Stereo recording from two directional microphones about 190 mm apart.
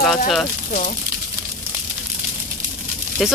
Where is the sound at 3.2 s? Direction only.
Centre (ahead or behind).